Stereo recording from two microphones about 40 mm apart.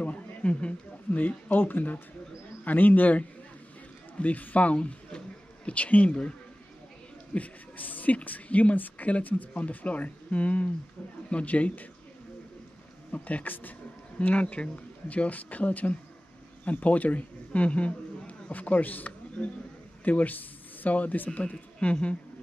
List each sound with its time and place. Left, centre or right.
0.0 s a sound: left
1.2 s speech: left
4.7 s speech: left
5.7 s speech: left
7.3 s speech: left
13.1 s speech: left
19.4 s speech: centre
20.1 s speech: left
21.7 s speech: left